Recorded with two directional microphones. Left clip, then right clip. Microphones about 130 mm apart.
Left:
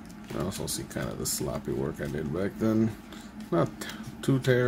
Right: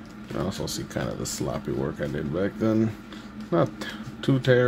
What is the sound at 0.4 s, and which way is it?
Speech, 15° right (ahead or behind).